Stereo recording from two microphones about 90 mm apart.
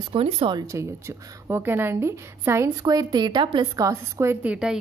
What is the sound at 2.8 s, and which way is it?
Speech, 45° right (ahead or behind).